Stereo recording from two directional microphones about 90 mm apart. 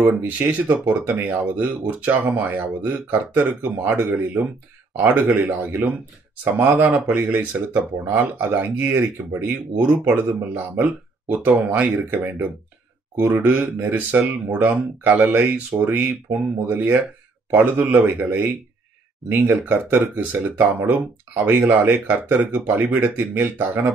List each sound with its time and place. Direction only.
0.2 s speech: 20° right (ahead or behind)